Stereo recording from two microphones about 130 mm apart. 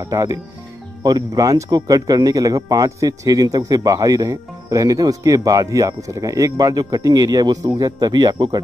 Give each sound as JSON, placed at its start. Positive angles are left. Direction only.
{"t": 0.0, "sound": "a man's voice", "side_deg": -25}